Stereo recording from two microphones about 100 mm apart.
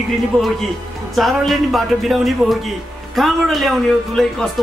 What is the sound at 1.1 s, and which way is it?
A man's voice, centre (ahead or behind).